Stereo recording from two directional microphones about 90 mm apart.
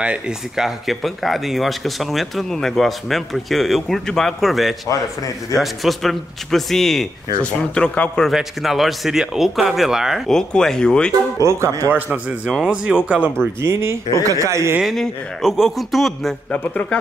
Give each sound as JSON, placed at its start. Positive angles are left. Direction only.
{"t": 0.0, "sound": "speech", "side_deg": -10}
{"t": 7.7, "sound": "a man's voice", "side_deg": 10}
{"t": 8.3, "sound": "speech", "side_deg": 0}
{"t": 11.3, "sound": "speech", "side_deg": -35}
{"t": 11.9, "sound": "a man's voice", "side_deg": -20}
{"t": 13.6, "sound": "a man's voice", "side_deg": -30}
{"t": 14.8, "sound": "speech", "side_deg": 0}
{"t": 16.5, "sound": "a man's voice", "side_deg": 15}